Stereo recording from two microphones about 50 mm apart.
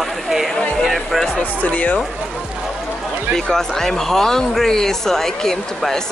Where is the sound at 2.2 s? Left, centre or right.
Centre.